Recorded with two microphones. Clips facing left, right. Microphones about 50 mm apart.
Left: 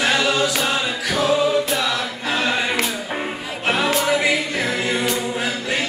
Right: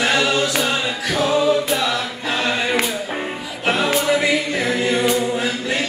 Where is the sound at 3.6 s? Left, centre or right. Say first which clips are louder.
Right 1 dB; centre.